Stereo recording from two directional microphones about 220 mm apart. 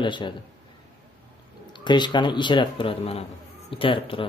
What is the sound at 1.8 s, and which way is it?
Speech, 20° left (ahead or behind).